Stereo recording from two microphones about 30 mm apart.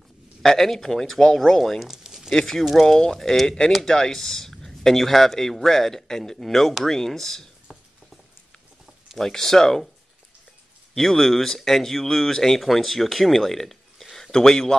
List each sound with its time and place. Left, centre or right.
0.4 s speech: centre
1.8 s a sound: centre
2.3 s speech: centre
3.4 s speech: left
9.2 s speech: centre
11.0 s speech: centre